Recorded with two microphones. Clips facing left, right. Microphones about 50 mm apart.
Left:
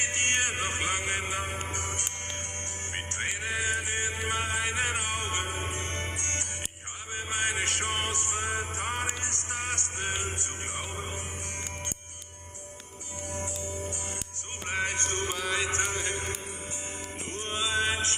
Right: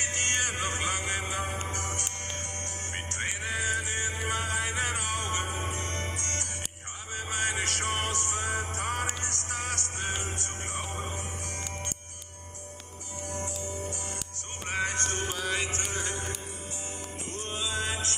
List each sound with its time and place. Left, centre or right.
0.0 s music: left
15.0 s music: left
17.5 s mantra: left